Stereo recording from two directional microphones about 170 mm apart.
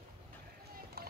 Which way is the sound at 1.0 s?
65° right (ahead or behind).